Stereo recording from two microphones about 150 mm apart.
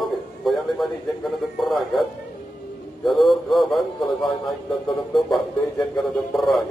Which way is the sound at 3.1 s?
Centre (ahead or behind).